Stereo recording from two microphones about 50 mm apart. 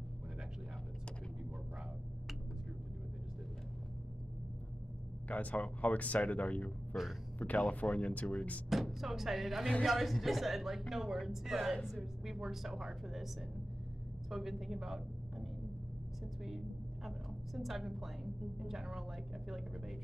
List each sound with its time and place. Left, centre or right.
5.3 s speech: left
8.6 s a woman's voice: centre
14.3 s a woman's voice: centre
16.4 s a sound: centre
17.6 s a woman's voice: centre